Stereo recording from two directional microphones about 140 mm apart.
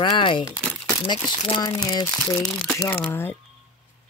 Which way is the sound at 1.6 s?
25° left (ahead or behind).